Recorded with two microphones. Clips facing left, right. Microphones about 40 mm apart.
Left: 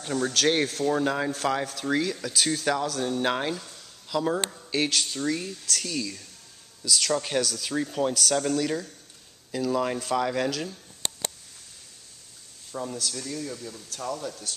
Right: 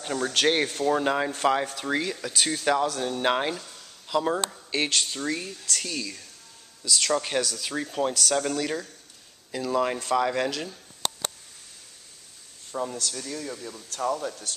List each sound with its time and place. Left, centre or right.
0.0 s speech: centre
12.9 s speech: centre